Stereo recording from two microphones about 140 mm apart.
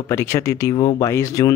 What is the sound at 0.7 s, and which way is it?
Speech, 30° left (ahead or behind).